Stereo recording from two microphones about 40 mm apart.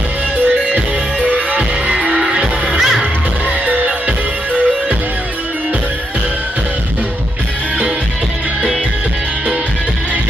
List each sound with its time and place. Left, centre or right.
1.6 s music: right